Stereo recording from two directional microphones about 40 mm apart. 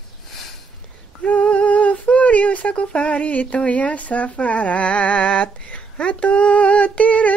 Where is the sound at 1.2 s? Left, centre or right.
Left.